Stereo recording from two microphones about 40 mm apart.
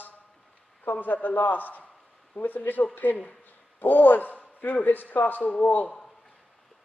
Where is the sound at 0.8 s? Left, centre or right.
Left.